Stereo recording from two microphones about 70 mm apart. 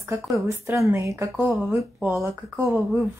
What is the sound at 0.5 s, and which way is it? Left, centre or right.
Speech, right.